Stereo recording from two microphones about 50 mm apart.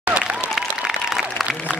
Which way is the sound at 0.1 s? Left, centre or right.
Centre.